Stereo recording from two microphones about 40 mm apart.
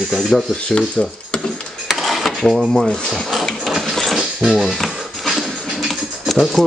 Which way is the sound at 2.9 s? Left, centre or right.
Centre.